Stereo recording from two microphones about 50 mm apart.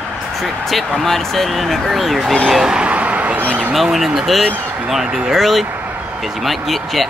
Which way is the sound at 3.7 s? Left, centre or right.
Centre.